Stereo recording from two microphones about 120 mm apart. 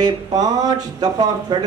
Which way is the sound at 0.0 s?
35° right (ahead or behind).